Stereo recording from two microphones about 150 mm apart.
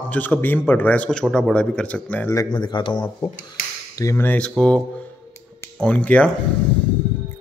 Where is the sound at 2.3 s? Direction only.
30° left (ahead or behind).